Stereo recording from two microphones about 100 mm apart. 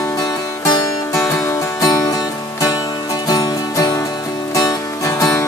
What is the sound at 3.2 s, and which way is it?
Music, 40° left (ahead or behind).